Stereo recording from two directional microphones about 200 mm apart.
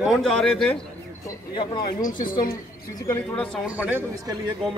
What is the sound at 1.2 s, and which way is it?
Speech, 25° left (ahead or behind).